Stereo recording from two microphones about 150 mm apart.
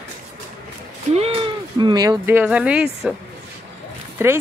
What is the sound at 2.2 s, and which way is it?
Speech, 10° right (ahead or behind).